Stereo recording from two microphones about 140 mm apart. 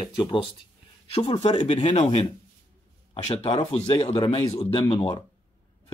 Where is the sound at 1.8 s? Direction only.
50° left (ahead or behind).